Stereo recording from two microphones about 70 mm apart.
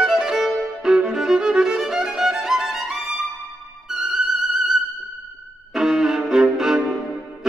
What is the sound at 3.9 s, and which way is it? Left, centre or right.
Music, centre.